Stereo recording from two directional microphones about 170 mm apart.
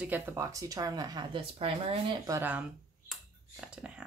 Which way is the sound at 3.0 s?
5° right (ahead or behind).